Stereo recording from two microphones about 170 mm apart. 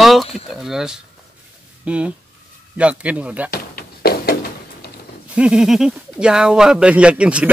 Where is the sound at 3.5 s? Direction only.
65° left (ahead or behind).